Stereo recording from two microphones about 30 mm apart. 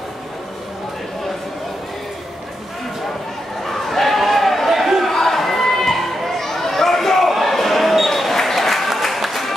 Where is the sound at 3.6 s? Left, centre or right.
Centre.